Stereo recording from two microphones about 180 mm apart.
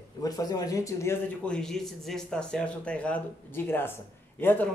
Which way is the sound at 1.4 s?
5° left (ahead or behind).